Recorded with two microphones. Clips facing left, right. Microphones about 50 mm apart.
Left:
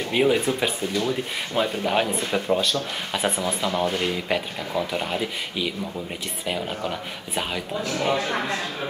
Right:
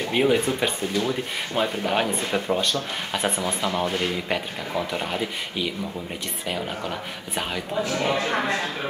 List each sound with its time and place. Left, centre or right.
0.1 s speech: centre
3.6 s speech: centre
8.0 s speech: centre